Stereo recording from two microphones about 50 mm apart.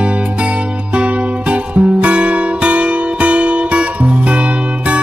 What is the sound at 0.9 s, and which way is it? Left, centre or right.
Music, right.